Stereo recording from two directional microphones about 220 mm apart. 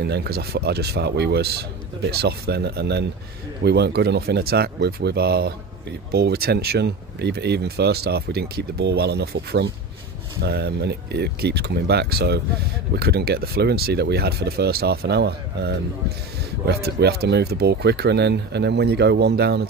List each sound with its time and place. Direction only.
0.0 s speech: 45° right (ahead or behind)